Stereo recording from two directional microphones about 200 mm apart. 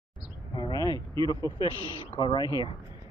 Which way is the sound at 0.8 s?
20° right (ahead or behind).